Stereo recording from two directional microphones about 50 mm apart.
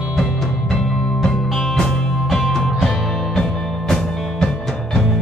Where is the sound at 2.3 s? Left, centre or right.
Centre.